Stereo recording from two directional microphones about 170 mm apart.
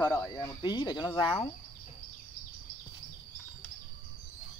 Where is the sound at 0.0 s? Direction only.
20° left (ahead or behind).